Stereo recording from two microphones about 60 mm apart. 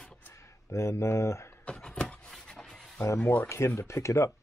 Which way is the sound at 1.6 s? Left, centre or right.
Centre.